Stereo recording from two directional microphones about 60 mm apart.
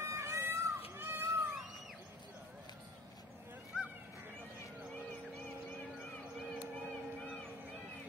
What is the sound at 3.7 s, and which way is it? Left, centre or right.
Honk, centre.